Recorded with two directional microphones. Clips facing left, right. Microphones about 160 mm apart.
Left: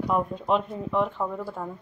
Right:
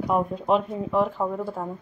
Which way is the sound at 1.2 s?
15° right (ahead or behind).